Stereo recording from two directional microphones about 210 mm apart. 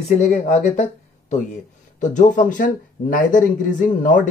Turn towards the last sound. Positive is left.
turn(degrees=40)  # may be behind; listen again after turning